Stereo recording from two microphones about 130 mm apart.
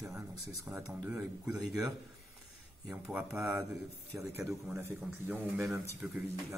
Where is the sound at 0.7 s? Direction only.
15° right (ahead or behind).